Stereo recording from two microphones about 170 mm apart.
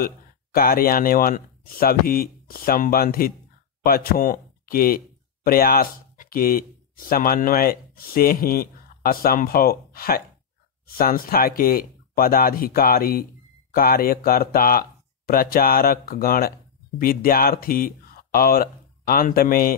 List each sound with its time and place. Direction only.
0.0 s speech: 60° left (ahead or behind)